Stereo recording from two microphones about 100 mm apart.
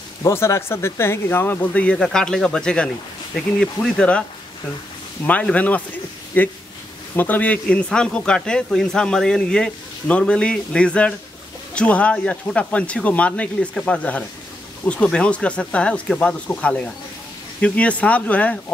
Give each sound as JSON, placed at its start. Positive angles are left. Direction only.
{"t": 0.2, "sound": "speech", "side_deg": 25}
{"t": 5.2, "sound": "speech", "side_deg": 15}